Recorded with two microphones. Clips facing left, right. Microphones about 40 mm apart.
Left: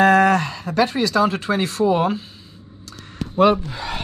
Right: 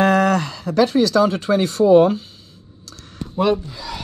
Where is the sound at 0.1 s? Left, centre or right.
Left.